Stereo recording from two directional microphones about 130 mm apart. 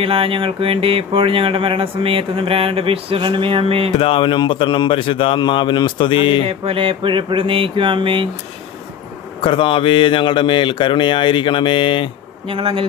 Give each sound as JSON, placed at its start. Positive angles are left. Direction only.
{"t": 0.0, "sound": "speech", "side_deg": -45}
{"t": 4.0, "sound": "a man's voice", "side_deg": 40}
{"t": 6.4, "sound": "a sound", "side_deg": -45}
{"t": 9.4, "sound": "a man's voice", "side_deg": 40}
{"t": 12.4, "sound": "speech", "side_deg": -45}